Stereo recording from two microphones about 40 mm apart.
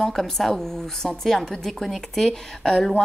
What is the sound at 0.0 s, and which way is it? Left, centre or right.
A woman's voice, centre.